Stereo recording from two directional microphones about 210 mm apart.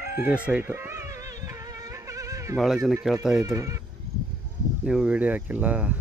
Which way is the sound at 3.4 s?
15° right (ahead or behind).